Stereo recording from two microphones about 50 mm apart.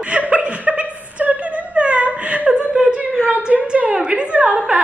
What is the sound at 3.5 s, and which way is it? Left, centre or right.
A woman's voice, right.